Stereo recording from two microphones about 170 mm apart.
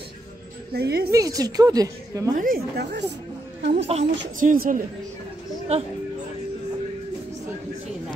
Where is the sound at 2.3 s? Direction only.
60° right (ahead or behind); by 3.0 s 80° right.